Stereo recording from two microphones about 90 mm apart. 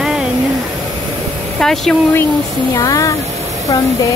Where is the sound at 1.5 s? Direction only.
5° left (ahead or behind).